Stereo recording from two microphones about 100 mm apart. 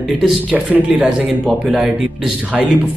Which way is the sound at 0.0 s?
5° right (ahead or behind).